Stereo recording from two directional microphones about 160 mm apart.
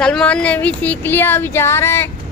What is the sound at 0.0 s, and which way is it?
Speech, 5° left (ahead or behind).